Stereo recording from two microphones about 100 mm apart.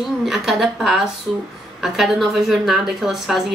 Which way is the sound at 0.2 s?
5° right (ahead or behind).